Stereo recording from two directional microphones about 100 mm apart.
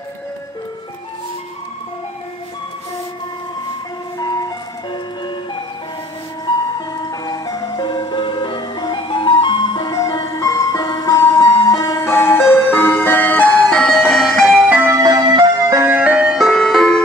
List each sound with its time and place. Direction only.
4.2 s vehicle: 40° left (ahead or behind)
6.9 s ice cream truck: 40° left (ahead or behind); by 14.7 s centre (ahead or behind)
14.9 s music: 40° right (ahead or behind)
15.8 s music: 15° right (ahead or behind); by 17.0 s 5° left (ahead or behind)